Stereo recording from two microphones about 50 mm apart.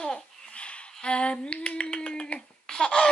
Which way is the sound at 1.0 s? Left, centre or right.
Left.